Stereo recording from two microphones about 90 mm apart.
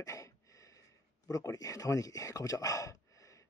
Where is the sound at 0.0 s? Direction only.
35° left (ahead or behind).